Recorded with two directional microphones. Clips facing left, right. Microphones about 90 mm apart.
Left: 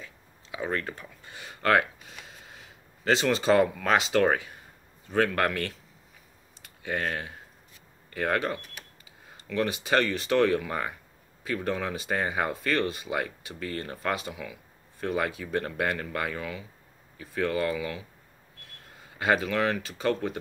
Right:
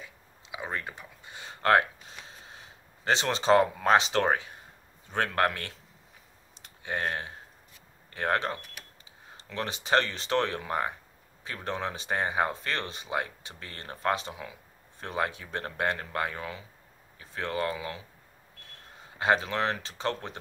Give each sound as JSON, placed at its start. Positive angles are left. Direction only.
{"t": 0.0, "sound": "a sound", "side_deg": -15}
{"t": 3.8, "sound": "speech", "side_deg": -25}
{"t": 6.8, "sound": "speech", "side_deg": -25}